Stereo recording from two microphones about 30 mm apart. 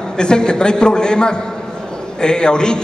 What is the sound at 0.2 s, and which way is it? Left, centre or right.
A man's voice, left.